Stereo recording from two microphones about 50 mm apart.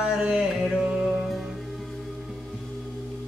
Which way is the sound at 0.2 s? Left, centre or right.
Centre.